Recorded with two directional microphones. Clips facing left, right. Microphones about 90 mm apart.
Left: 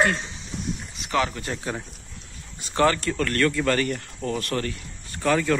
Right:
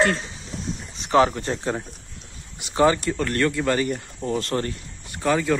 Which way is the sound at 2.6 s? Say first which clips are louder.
Right 2 dB; 15° right (ahead or behind).